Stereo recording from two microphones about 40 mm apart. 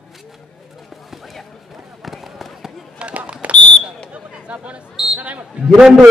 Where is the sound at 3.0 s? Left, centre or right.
Right.